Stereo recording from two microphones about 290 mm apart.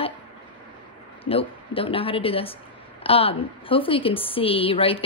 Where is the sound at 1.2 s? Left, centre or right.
Centre.